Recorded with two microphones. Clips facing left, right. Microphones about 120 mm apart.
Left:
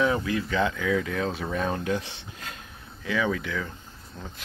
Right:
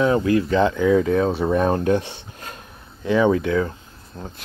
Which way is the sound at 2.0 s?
55° right (ahead or behind).